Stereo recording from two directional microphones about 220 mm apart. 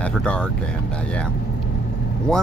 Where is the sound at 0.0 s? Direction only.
5° left (ahead or behind).